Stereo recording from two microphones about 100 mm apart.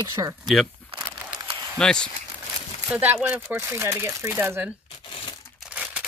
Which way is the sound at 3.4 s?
25° right (ahead or behind).